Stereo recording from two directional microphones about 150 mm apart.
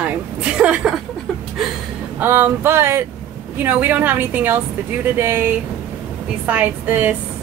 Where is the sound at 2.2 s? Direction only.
15° right (ahead or behind).